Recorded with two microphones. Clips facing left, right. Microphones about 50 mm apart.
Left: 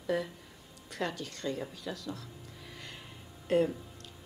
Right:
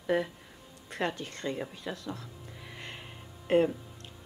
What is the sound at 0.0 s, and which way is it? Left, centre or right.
A woman's voice, right.